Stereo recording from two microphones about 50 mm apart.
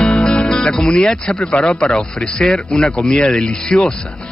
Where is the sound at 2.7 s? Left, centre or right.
Left.